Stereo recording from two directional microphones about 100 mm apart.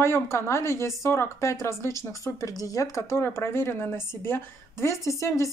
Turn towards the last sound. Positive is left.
turn(degrees=30)  # may be behind; listen again after turning